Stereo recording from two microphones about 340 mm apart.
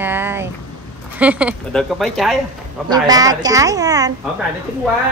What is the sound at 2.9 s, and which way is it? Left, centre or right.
A woman's voice, centre.